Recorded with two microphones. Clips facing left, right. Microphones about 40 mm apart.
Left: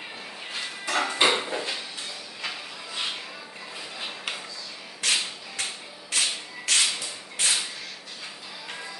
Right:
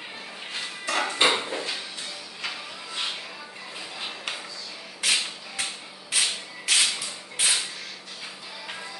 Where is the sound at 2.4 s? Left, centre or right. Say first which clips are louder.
Right 1 dB; centre.